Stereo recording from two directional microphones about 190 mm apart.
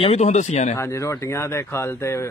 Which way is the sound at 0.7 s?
15° left (ahead or behind).